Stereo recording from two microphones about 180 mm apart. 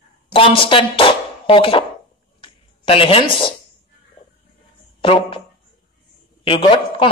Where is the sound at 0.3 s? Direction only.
30° left (ahead or behind).